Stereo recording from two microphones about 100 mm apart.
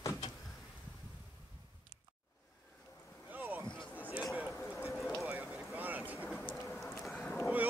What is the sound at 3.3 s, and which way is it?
Boat, 20° right (ahead or behind).